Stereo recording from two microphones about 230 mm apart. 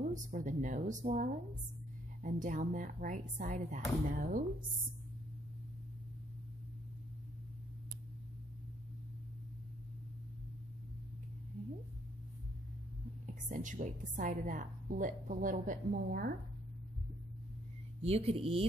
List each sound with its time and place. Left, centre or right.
0.1 s a woman's voice: right
13.5 s a woman's voice: right
18.0 s speech: right